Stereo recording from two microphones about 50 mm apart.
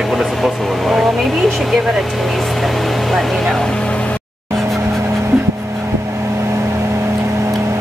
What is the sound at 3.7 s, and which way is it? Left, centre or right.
Vehicle, left.